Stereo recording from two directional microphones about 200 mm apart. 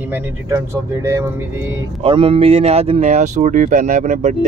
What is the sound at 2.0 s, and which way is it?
Speech, 25° right (ahead or behind).